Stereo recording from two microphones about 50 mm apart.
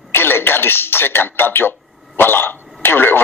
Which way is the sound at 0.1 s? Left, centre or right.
Left.